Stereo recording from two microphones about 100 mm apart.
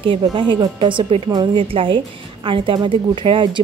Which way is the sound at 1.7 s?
60° right (ahead or behind).